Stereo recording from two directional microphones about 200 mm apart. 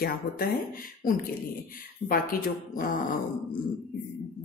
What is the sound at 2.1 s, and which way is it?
Speech, 45° left (ahead or behind).